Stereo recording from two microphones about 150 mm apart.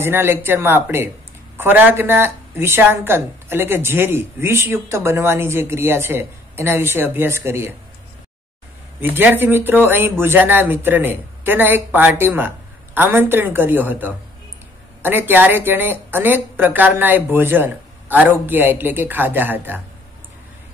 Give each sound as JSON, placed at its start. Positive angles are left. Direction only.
{"t": 0.0, "sound": "speech", "side_deg": -15}
{"t": 9.0, "sound": "speech", "side_deg": -15}